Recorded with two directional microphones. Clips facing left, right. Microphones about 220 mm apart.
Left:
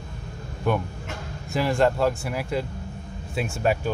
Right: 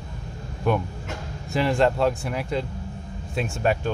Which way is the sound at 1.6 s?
Centre (ahead or behind).